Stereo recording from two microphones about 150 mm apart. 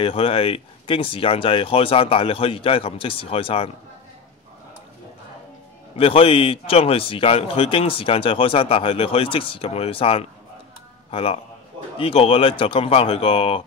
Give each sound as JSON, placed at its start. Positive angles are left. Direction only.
{"t": 0.0, "sound": "a man's voice", "side_deg": 40}
{"t": 5.9, "sound": "a man's voice", "side_deg": 40}